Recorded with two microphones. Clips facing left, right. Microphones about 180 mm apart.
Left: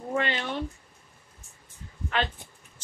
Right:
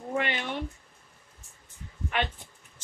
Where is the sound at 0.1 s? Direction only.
15° right (ahead or behind).